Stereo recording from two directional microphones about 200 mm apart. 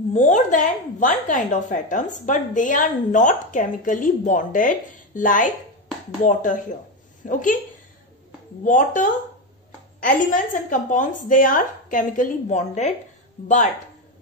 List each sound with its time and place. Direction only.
0.1 s a woman's voice: 35° left (ahead or behind)
8.6 s a woman's voice: 40° left (ahead or behind)